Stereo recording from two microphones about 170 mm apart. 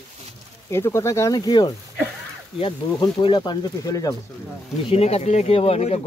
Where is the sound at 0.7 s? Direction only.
15° left (ahead or behind).